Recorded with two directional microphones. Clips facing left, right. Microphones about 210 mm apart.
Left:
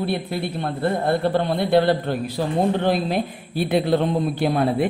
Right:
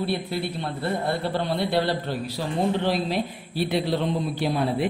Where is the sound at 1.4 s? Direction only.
50° left (ahead or behind).